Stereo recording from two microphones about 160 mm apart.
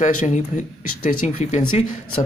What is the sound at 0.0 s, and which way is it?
Speech, 50° left (ahead or behind).